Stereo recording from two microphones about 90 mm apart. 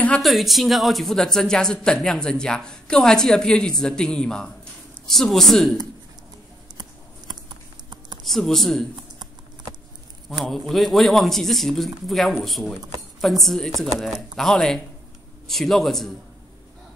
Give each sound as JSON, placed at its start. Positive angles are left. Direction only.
{"t": 0.2, "sound": "speech", "side_deg": 0}
{"t": 8.2, "sound": "speech", "side_deg": 5}
{"t": 10.3, "sound": "speech", "side_deg": 5}